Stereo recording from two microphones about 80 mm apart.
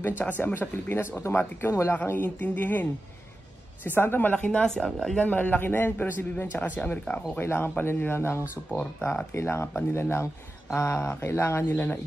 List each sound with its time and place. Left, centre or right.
0.2 s a man's voice: left; by 5.2 s centre
5.2 s a man's voice: left
9.3 s a man's voice: left